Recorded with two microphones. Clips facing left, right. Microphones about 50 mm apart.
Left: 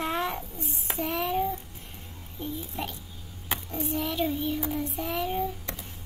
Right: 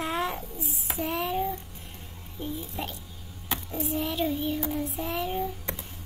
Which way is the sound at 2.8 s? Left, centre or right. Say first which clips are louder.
Even; centre.